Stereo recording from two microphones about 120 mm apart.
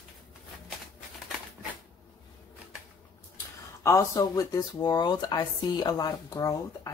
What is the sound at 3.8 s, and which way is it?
Speech, 30° left (ahead or behind).